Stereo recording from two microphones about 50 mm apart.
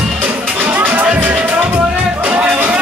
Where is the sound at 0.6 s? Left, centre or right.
Right.